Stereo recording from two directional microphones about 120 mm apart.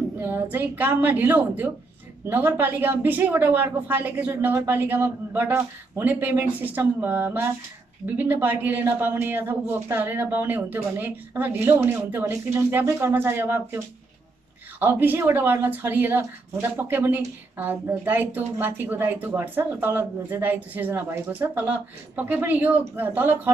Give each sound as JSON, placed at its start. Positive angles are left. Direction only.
{"t": 0.2, "sound": "a woman's voice", "side_deg": -15}
{"t": 14.8, "sound": "a woman's voice", "side_deg": -15}